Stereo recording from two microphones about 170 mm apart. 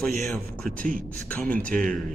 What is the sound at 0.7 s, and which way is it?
Speech, 55° right (ahead or behind).